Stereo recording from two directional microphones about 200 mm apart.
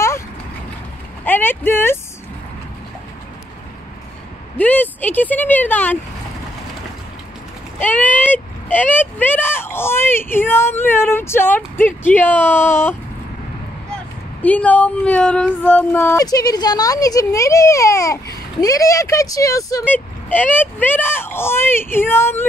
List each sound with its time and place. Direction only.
1.2 s speech: 10° left (ahead or behind)
4.6 s speech: 10° left (ahead or behind)
7.8 s speech: 10° left (ahead or behind)
14.4 s speech: 5° left (ahead or behind)